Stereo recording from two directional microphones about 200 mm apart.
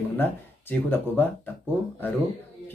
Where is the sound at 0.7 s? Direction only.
10° left (ahead or behind).